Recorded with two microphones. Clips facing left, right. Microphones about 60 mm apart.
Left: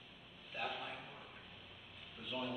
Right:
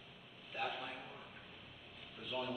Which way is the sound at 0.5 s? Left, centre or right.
Centre.